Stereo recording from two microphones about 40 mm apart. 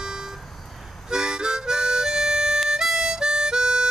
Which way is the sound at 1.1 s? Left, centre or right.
Centre.